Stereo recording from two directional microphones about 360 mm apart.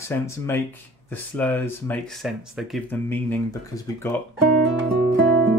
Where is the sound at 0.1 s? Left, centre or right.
Centre.